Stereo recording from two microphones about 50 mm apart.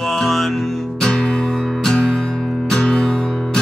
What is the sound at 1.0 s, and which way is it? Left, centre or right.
Music, centre.